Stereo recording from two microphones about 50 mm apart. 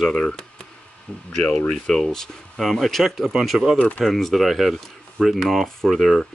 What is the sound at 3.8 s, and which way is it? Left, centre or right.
Speech, left.